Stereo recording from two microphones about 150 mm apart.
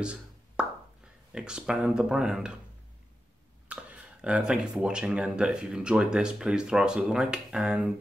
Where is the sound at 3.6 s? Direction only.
10° right (ahead or behind).